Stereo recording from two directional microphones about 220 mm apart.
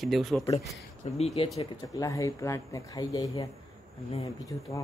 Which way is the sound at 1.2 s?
30° left (ahead or behind).